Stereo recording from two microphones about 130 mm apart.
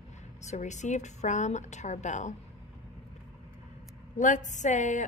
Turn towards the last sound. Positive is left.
turn(degrees=70)  # may be behind; listen again after turning